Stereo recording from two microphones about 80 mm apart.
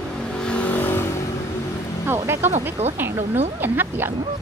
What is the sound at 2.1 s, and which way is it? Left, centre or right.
Speech, right.